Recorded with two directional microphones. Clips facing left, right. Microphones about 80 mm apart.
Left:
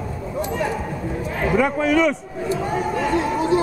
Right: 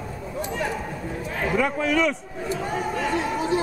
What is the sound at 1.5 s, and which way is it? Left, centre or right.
Speech, left.